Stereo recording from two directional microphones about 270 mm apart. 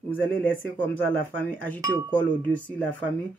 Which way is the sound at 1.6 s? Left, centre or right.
Centre.